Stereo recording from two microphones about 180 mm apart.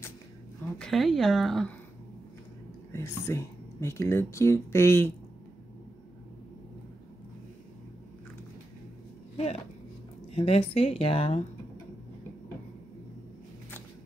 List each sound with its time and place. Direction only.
0.7 s speech: centre (ahead or behind)
2.9 s speech: 15° left (ahead or behind)
10.3 s a woman's voice: 35° left (ahead or behind)